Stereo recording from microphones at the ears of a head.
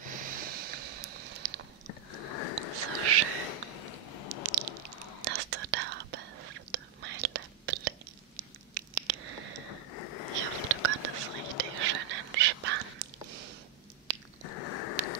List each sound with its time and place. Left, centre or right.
0.0 s snort: right
1.9 s sniff: left
3.4 s a sound: left
4.4 s squish: right
5.2 s whispering: right
8.4 s a sound: right
9.7 s a sound: left
10.3 s whispering: right
14.4 s biting: left